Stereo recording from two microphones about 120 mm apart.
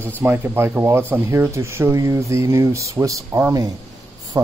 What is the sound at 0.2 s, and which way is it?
Speech, 15° right (ahead or behind).